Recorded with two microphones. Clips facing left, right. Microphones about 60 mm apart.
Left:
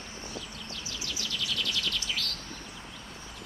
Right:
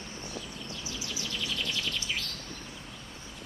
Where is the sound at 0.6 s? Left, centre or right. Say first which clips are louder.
Even; right.